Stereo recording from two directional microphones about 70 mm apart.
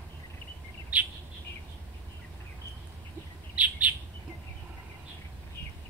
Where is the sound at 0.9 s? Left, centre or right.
Centre.